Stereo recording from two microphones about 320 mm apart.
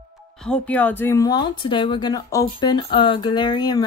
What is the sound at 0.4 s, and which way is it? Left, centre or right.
Speech, centre.